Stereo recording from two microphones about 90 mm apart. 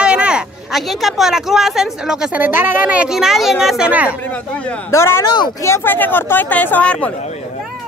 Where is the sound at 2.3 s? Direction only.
20° right (ahead or behind).